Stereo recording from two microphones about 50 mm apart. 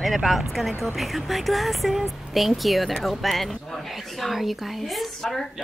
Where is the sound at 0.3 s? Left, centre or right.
Centre.